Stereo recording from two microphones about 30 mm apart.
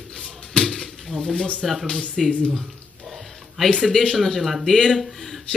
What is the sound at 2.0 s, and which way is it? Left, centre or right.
Speech, centre.